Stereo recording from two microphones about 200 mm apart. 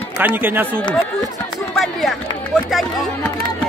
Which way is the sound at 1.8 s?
Centre (ahead or behind).